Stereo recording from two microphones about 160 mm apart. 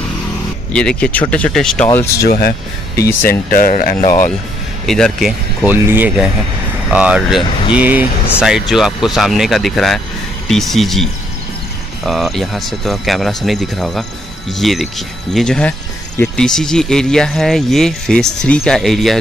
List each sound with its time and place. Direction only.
0.7 s speech: 5° left (ahead or behind)
1.9 s speech: 20° left (ahead or behind)
2.2 s speech: 75° left (ahead or behind)
3.0 s speech: 65° left (ahead or behind)
4.8 s speech: centre (ahead or behind)